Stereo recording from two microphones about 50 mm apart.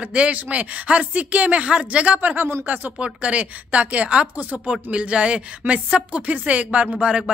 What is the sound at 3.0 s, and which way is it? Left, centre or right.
A woman's voice, right.